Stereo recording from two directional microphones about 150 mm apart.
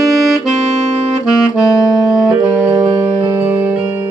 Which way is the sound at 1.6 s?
25° left (ahead or behind).